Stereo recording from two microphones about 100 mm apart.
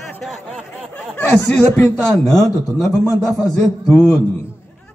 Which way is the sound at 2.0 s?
5° left (ahead or behind).